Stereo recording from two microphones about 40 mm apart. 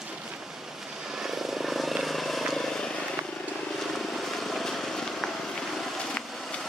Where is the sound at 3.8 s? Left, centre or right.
Centre.